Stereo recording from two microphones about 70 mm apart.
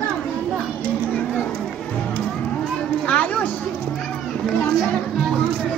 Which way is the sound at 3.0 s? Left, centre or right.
Left.